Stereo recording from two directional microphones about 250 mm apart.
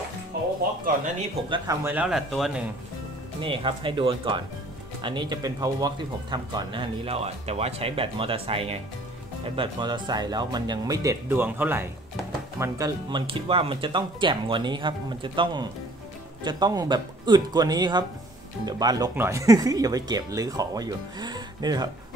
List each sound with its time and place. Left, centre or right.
1.5 s a man's voice: centre
3.3 s speech: centre